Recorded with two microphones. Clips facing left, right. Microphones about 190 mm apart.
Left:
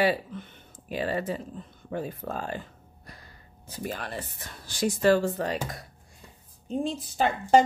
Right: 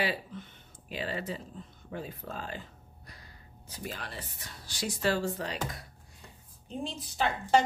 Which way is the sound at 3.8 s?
50° left (ahead or behind).